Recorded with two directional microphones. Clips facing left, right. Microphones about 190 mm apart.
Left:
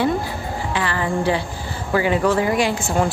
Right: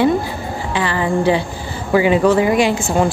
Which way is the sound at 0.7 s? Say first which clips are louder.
Right 5 dB; 20° right (ahead or behind).